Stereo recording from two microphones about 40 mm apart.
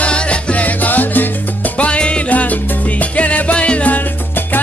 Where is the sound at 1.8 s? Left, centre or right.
Left.